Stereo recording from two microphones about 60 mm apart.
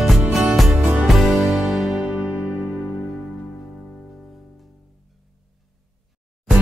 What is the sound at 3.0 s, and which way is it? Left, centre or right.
Music, centre.